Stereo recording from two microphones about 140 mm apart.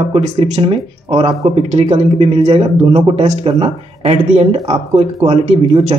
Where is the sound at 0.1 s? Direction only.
40° right (ahead or behind).